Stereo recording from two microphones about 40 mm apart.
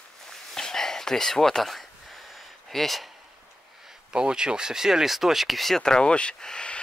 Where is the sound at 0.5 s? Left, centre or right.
Centre.